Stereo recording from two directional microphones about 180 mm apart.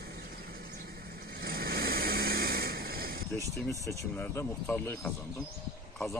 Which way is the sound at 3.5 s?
15° left (ahead or behind).